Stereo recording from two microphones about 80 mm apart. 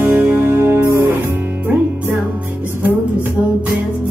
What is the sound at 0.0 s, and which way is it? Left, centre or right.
Music, right.